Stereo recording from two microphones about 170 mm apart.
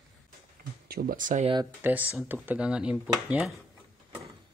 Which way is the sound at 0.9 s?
60° right (ahead or behind).